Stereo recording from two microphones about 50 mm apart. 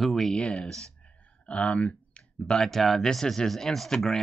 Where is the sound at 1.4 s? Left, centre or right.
Left.